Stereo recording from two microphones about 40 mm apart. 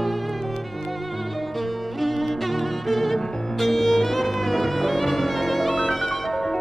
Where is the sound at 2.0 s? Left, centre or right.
Centre.